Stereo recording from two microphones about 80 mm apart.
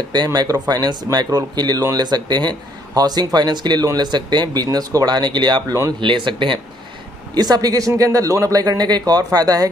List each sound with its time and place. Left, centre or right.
0.1 s speech: right
4.6 s speech: right
5.9 s speech: right
7.3 s speech: right